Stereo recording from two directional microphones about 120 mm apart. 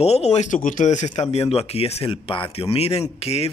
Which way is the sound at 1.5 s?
55° left (ahead or behind).